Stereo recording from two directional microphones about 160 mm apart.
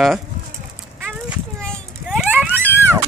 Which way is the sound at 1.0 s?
Centre (ahead or behind).